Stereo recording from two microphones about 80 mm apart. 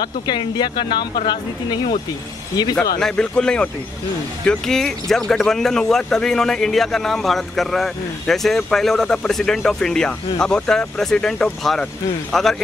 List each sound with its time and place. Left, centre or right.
0.0 s speech: left
3.0 s speech: centre